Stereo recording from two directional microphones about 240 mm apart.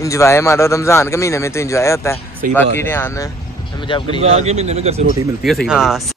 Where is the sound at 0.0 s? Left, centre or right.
Centre.